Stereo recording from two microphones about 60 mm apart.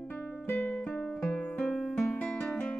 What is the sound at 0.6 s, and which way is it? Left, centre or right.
Music, left.